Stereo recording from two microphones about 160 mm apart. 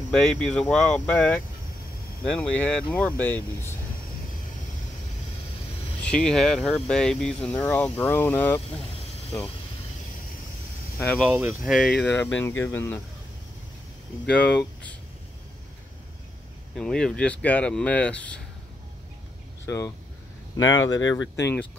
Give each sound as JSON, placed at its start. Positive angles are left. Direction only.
{"t": 0.1, "sound": "speech", "side_deg": 5}
{"t": 6.0, "sound": "speech", "side_deg": 5}
{"t": 11.0, "sound": "speech", "side_deg": 10}
{"t": 11.2, "sound": "speech", "side_deg": -10}
{"t": 11.7, "sound": "speech", "side_deg": 5}
{"t": 14.3, "sound": "speech", "side_deg": 10}
{"t": 16.7, "sound": "speech", "side_deg": 5}
{"t": 19.6, "sound": "speech", "side_deg": 20}